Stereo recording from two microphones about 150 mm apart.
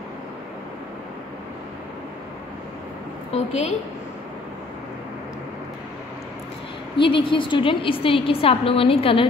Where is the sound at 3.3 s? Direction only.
45° left (ahead or behind).